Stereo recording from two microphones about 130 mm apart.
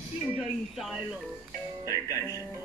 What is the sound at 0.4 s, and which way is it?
Speech, 5° right (ahead or behind).